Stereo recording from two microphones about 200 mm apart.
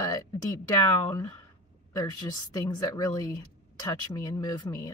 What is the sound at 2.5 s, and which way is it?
A woman's voice, 20° left (ahead or behind).